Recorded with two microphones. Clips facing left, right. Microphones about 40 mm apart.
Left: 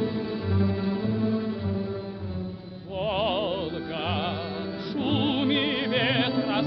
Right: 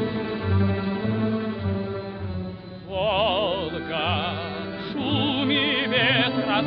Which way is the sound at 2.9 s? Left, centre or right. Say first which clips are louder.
Right 4 dB; right.